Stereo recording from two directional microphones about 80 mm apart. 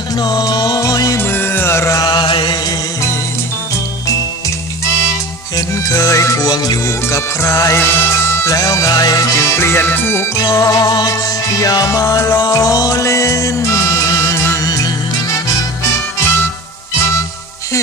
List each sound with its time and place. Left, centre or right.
0.2 s music: left
1.1 s music: left
2.0 s chant: left
5.6 s music: left
7.2 s music: left
10.4 s music: left
10.9 s music: left
11.5 s music: left